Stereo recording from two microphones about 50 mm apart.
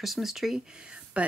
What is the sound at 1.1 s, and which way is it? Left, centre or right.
Speech, right.